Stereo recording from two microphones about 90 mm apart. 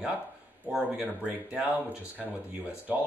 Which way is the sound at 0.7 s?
10° right (ahead or behind).